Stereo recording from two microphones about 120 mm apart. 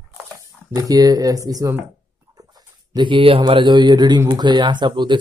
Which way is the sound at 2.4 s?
35° right (ahead or behind).